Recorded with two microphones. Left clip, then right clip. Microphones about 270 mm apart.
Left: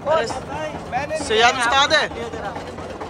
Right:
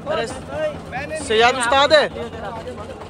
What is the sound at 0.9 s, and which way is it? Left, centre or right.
Speech, left.